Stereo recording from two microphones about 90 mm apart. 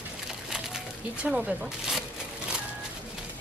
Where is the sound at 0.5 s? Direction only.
5° right (ahead or behind).